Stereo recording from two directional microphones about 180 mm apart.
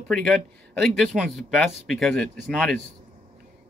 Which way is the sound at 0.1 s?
Centre (ahead or behind).